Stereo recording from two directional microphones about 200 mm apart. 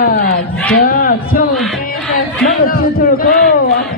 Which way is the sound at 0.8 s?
50° left (ahead or behind).